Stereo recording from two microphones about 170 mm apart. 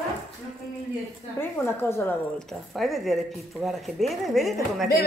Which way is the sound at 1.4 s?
15° left (ahead or behind).